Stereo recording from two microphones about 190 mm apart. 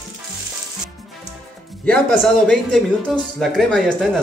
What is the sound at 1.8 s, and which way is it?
Speech, 5° left (ahead or behind).